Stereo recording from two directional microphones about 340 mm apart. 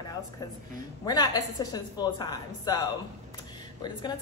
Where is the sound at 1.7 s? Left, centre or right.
Centre.